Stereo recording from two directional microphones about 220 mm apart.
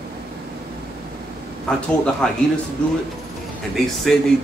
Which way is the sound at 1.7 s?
5° left (ahead or behind).